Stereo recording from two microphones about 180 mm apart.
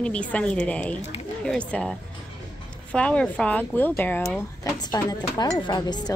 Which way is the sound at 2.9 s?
5° left (ahead or behind).